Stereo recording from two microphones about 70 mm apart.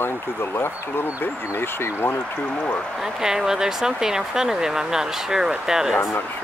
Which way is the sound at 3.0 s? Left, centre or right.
Centre.